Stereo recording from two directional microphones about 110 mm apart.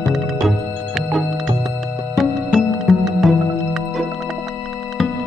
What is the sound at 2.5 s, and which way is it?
Music, centre (ahead or behind).